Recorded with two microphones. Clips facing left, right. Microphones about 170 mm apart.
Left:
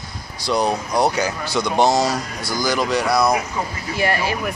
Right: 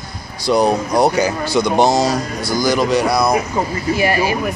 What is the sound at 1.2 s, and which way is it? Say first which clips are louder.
Speech: right 6 dB; 20° right (ahead or behind).